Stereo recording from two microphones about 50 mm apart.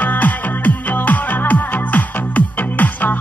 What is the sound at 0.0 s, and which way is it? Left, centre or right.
Music, left.